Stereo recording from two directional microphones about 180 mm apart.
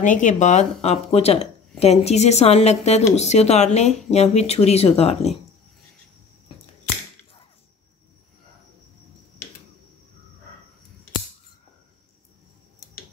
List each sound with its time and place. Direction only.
0.0 s speech: 45° left (ahead or behind)